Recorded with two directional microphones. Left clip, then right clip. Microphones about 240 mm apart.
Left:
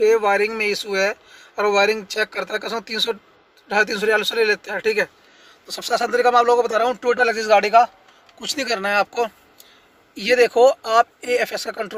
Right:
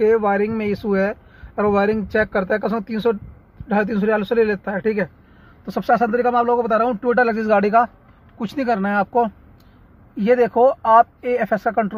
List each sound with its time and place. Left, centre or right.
0.0 s speech: centre
8.4 s speech: centre